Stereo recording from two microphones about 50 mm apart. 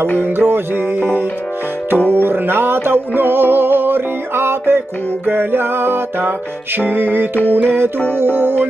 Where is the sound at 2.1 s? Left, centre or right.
Right.